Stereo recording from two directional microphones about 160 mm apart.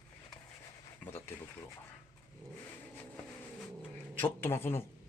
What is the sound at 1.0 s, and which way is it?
Speech, 10° left (ahead or behind).